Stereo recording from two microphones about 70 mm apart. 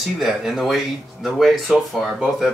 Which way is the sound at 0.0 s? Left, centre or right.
Centre.